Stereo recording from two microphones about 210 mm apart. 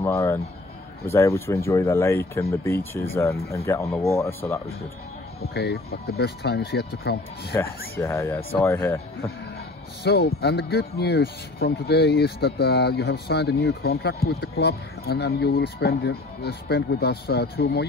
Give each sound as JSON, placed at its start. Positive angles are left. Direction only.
{"t": 0.0, "sound": "speech", "side_deg": 10}
{"t": 5.5, "sound": "speech", "side_deg": 50}
{"t": 7.9, "sound": "speech", "side_deg": 10}
{"t": 10.0, "sound": "speech", "side_deg": 50}